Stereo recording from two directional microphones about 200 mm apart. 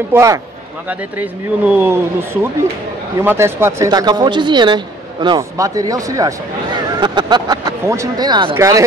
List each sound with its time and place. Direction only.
0.1 s speech: 15° right (ahead or behind)